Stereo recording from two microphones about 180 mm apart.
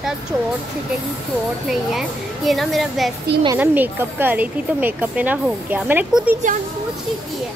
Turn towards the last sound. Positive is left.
turn(degrees=-45)  # may be behind; listen again after turning